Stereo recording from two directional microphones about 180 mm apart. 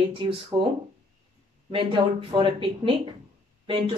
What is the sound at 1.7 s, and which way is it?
Speech, 30° right (ahead or behind).